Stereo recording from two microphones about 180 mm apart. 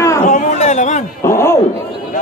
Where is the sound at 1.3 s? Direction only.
15° left (ahead or behind).